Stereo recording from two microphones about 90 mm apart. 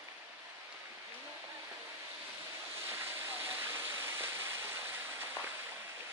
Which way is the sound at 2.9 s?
25° right (ahead or behind).